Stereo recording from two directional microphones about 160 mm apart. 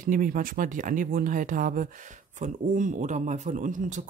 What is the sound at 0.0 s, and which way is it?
Speech, 55° right (ahead or behind).